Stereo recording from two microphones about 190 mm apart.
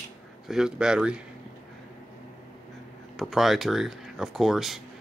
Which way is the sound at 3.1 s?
Centre (ahead or behind).